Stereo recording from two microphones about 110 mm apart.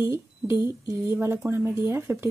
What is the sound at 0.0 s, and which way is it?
Speech, 25° right (ahead or behind).